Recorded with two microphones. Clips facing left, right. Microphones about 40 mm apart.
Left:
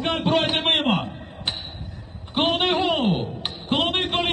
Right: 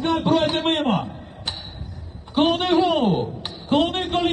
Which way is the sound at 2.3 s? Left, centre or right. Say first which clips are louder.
Right 3 dB; left.